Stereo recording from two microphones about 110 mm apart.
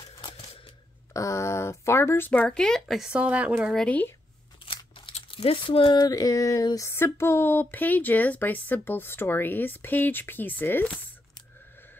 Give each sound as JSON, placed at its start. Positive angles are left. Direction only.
{"t": 1.1, "sound": "speech", "side_deg": 30}
{"t": 3.7, "sound": "speech", "side_deg": 10}
{"t": 5.3, "sound": "speech", "side_deg": 55}
{"t": 5.9, "sound": "a sound", "side_deg": 30}
{"t": 6.9, "sound": "speech", "side_deg": 20}